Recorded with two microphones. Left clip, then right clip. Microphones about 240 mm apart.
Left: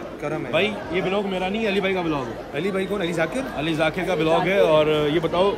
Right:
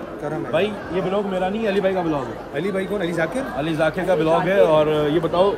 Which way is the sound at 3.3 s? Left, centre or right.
Centre.